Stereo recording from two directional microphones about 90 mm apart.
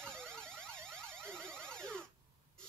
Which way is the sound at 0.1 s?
5° left (ahead or behind).